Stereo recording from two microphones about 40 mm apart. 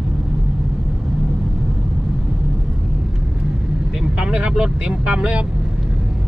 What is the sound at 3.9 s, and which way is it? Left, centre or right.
Vehicle, right.